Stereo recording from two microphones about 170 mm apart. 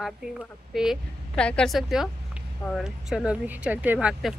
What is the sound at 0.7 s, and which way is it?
Speech, centre (ahead or behind).